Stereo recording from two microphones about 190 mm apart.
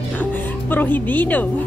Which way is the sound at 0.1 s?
10° left (ahead or behind).